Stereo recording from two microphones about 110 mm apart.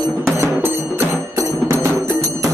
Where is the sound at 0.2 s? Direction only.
20° right (ahead or behind).